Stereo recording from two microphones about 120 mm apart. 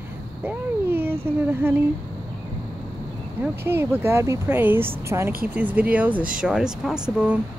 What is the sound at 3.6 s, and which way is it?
Speech, 20° right (ahead or behind).